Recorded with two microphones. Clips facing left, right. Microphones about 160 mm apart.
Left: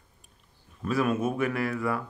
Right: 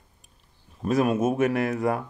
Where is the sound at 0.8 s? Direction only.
40° right (ahead or behind).